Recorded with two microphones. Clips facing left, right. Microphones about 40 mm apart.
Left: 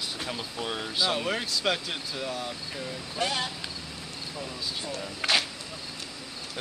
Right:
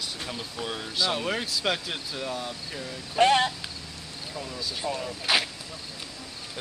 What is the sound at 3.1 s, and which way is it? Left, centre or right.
Speech, right.